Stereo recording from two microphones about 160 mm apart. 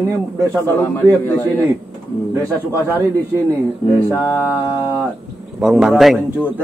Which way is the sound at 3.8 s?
35° left (ahead or behind).